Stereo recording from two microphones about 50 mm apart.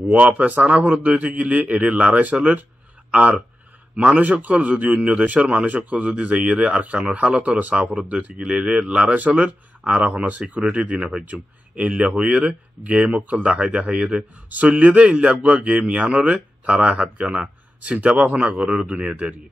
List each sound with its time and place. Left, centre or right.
0.1 s a man's voice: right
4.2 s a man's voice: right